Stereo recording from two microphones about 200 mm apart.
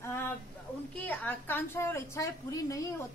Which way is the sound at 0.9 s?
10° left (ahead or behind).